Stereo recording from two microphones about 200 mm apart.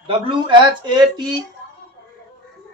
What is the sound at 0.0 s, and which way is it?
Speech, 25° right (ahead or behind).